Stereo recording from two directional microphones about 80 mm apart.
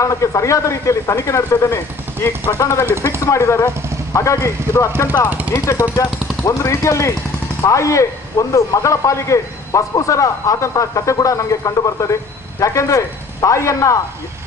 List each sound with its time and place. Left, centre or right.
0.0 s a man's voice: left